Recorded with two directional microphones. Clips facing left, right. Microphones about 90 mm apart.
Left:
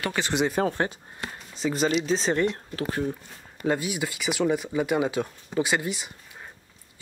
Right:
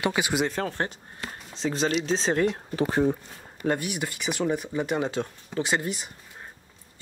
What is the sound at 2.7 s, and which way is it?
Speech, 30° right (ahead or behind).